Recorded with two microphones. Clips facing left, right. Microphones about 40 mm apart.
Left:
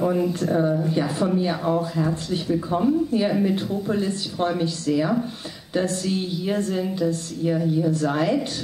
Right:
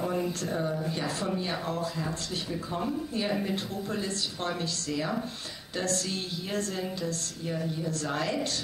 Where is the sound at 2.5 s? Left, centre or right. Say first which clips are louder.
Left 10 dB; centre.